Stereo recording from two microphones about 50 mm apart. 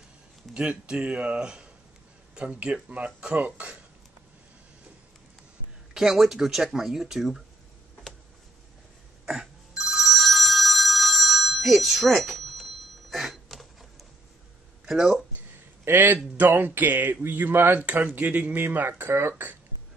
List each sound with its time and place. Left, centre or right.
0.6 s speech: centre
5.9 s speech: centre
9.2 s telephone bell ringing: centre
14.9 s a sound: centre
15.8 s a man's voice: right
17.9 s speech: right
18.9 s speech: right